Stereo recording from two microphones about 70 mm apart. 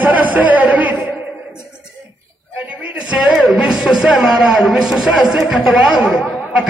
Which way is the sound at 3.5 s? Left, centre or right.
Centre.